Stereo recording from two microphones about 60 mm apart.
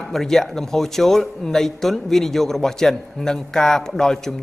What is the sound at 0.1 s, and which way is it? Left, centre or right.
Speech, centre.